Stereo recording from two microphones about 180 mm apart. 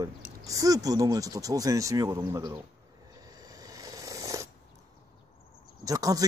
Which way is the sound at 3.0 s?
20° right (ahead or behind).